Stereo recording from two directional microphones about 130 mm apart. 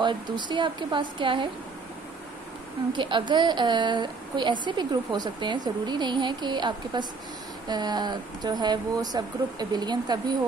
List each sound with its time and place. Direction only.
0.0 s a woman's voice: 35° right (ahead or behind)
2.9 s a woman's voice: 40° right (ahead or behind)